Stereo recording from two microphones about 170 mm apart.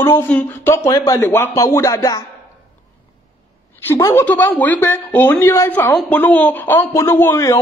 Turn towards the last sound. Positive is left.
turn(degrees=15)  # may be behind; listen again after turning